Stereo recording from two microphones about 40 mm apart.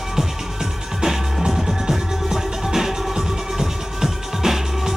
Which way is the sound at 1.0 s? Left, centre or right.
Centre.